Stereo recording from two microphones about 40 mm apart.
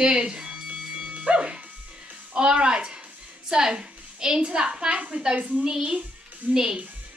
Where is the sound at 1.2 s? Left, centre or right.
Right.